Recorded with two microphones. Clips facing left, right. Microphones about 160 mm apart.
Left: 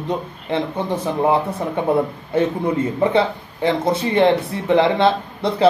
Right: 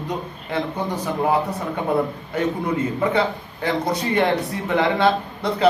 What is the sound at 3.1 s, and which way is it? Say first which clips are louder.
Speech: left 3 dB; 25° left (ahead or behind).